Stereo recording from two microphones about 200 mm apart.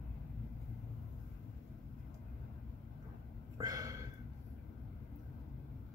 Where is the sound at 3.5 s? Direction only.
20° right (ahead or behind).